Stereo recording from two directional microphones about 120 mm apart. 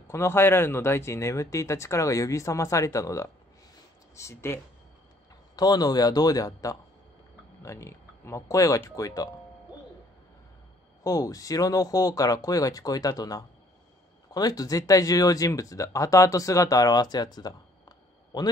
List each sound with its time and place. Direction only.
0.1 s speech: 20° left (ahead or behind)
5.6 s speech: 35° left (ahead or behind)
11.1 s speech: 30° left (ahead or behind)